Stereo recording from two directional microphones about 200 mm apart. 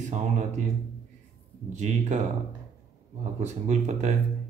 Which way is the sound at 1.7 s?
35° right (ahead or behind).